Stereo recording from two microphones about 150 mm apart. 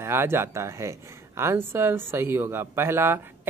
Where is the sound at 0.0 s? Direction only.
15° right (ahead or behind).